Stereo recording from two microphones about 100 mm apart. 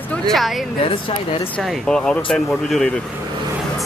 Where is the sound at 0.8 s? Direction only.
60° left (ahead or behind).